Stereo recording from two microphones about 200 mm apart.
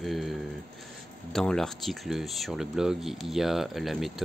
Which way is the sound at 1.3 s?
5° left (ahead or behind).